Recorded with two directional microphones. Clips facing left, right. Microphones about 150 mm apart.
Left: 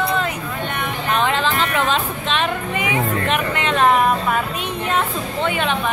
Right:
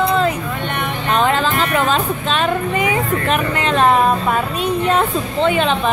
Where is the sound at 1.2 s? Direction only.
40° right (ahead or behind).